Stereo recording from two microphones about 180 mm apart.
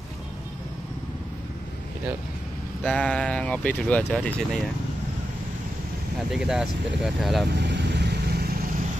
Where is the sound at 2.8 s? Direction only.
5° left (ahead or behind).